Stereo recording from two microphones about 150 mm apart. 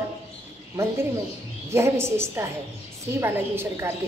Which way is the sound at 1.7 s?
20° right (ahead or behind).